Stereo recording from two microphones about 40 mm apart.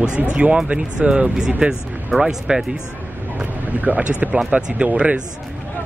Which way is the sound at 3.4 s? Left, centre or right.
Right.